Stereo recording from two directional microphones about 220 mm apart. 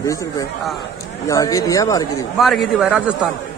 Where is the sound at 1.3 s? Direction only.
15° left (ahead or behind).